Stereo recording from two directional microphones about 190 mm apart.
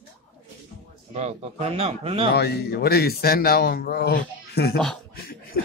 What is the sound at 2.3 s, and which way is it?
Speech, 55° left (ahead or behind).